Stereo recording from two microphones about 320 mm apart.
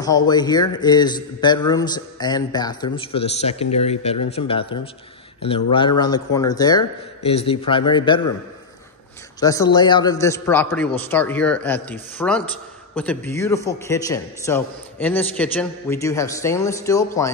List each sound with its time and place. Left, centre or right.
0.0 s a man's voice: centre
9.4 s a man's voice: centre